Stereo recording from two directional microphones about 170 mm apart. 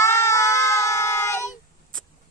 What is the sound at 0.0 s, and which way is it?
Child singing, 15° left (ahead or behind).